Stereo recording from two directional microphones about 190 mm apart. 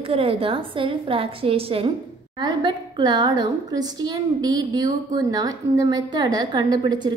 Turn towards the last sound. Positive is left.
turn(degrees=-25)  # may be behind; listen again after turning